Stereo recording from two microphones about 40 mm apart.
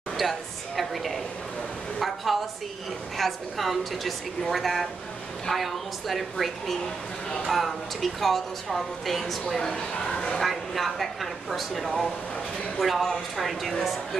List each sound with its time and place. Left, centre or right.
0.2 s a woman's voice: centre
9.6 s speech: centre
10.4 s a woman's voice: centre